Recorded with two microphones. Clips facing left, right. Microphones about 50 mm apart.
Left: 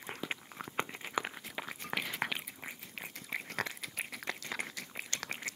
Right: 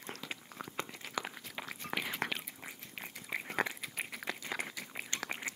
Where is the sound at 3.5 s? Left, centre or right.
Centre.